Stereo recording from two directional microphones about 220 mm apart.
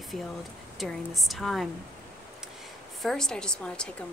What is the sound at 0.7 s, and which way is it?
Speech, centre (ahead or behind).